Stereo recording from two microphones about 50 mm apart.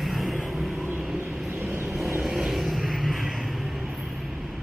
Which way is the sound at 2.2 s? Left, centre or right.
Centre.